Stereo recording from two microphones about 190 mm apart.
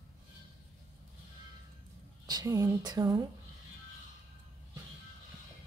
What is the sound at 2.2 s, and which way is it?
Speech, 20° right (ahead or behind).